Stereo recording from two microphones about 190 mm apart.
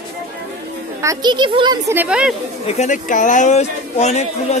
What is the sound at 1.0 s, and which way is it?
Speech, 20° right (ahead or behind).